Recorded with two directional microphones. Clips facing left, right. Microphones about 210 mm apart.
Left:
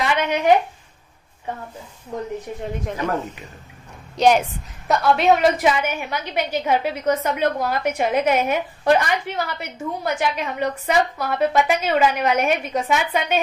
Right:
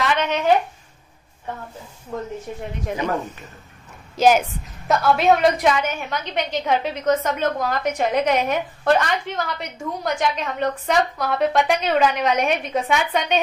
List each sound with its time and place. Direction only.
0.0 s speech: 10° left (ahead or behind)
3.0 s a woman's voice: 20° right (ahead or behind)
4.2 s a woman's voice: centre (ahead or behind)